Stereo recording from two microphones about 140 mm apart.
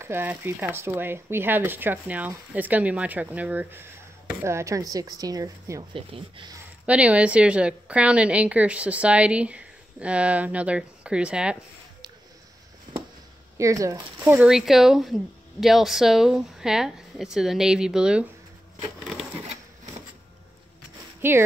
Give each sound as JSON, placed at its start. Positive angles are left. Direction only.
{"t": 0.0, "sound": "speech", "side_deg": -15}
{"t": 5.9, "sound": "speech", "side_deg": -40}
{"t": 6.9, "sound": "speech", "side_deg": -10}
{"t": 13.6, "sound": "speech", "side_deg": -20}
{"t": 14.5, "sound": "speech", "side_deg": 0}
{"t": 21.2, "sound": "speech", "side_deg": -15}